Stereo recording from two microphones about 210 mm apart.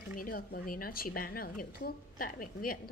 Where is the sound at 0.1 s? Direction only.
45° left (ahead or behind).